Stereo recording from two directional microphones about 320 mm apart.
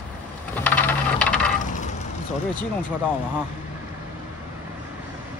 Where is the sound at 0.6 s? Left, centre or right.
Centre.